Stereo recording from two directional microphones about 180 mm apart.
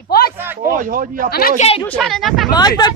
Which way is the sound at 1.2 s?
55° left (ahead or behind).